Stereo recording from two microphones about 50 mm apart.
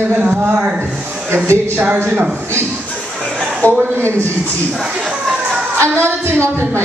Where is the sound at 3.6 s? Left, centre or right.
Right.